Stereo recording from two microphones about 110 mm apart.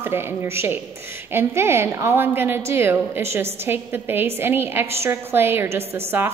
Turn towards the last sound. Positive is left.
turn(degrees=-20)  # may be behind; listen again after turning